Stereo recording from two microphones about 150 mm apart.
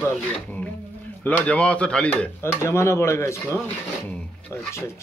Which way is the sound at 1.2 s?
10° left (ahead or behind).